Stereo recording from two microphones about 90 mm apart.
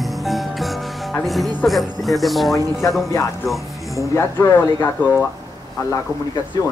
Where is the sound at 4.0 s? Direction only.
30° left (ahead or behind).